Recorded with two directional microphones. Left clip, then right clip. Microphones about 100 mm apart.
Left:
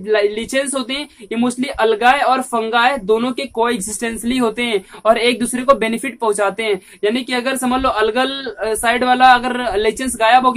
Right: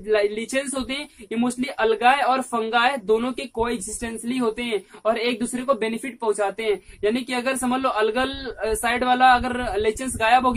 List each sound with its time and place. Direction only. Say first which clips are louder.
0.1 s speech: left 5 dB; 15° left (ahead or behind)
4.0 s speech: left 7 dB; 40° left (ahead or behind); by 10.5 s 15° left (ahead or behind)